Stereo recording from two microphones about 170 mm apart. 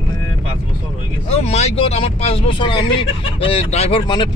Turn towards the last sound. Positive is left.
turn(degrees=30)  # may be behind; listen again after turning